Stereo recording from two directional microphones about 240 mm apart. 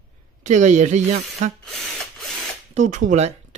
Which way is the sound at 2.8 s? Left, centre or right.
Right.